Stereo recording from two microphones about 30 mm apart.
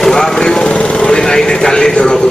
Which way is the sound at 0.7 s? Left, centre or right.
Left.